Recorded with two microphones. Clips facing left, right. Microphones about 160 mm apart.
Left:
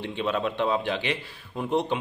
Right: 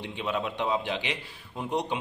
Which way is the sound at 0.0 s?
15° right (ahead or behind).